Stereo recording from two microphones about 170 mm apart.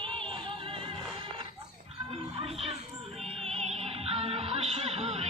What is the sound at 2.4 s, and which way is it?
Music, 35° right (ahead or behind).